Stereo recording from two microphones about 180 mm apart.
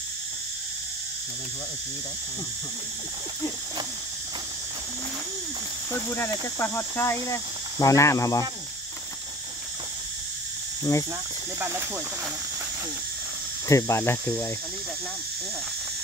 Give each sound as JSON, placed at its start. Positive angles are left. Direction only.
{"t": 6.0, "sound": "speech", "side_deg": 15}
{"t": 10.8, "sound": "speech", "side_deg": 15}
{"t": 13.7, "sound": "speech", "side_deg": 15}